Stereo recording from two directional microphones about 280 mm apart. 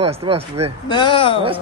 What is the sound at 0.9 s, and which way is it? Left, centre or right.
Speech, centre.